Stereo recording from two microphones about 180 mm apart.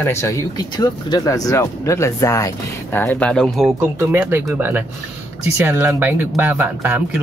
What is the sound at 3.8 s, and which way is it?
Speech, 10° right (ahead or behind).